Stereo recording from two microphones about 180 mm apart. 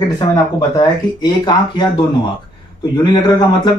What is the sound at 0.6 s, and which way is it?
Speech, 25° left (ahead or behind).